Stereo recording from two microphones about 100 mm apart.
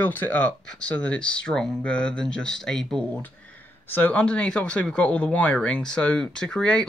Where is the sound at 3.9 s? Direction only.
15° left (ahead or behind).